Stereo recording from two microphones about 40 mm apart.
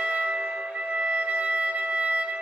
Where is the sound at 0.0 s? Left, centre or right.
Right.